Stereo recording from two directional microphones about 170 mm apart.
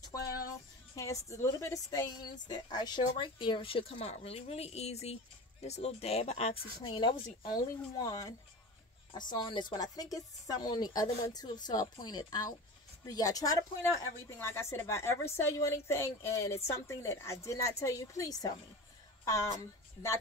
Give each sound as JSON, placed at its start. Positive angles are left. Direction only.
{"t": 0.9, "sound": "a woman's voice", "side_deg": 20}